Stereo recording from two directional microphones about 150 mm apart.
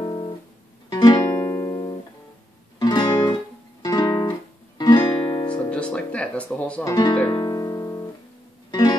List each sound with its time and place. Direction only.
0.0 s guitar: 30° left (ahead or behind)
0.8 s music: 25° left (ahead or behind)
3.8 s guitar: 25° left (ahead or behind)
4.7 s music: 30° left (ahead or behind)
5.5 s music: 10° left (ahead or behind)
6.8 s speech: 25° left (ahead or behind)
7.2 s music: 30° left (ahead or behind)